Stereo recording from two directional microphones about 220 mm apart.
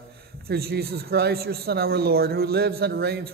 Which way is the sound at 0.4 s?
45° right (ahead or behind).